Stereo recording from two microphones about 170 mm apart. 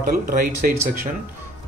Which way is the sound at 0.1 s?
60° right (ahead or behind).